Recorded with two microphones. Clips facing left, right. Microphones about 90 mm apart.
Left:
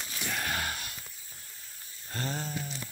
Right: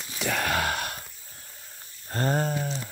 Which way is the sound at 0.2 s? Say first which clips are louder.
Right 8 dB; 90° right.